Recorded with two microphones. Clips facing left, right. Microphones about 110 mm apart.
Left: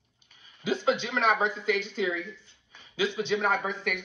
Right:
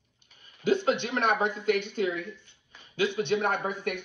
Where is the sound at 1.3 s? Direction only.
55° right (ahead or behind).